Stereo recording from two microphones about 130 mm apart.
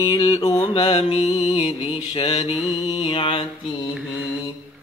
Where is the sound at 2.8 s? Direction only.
35° left (ahead or behind).